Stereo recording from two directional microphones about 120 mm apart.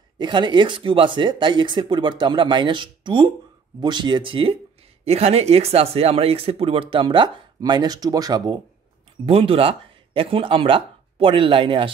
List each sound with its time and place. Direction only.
0.2 s speech: 40° right (ahead or behind)
5.0 s speech: 60° right (ahead or behind); by 8.5 s 30° right (ahead or behind)
9.2 s speech: 50° right (ahead or behind)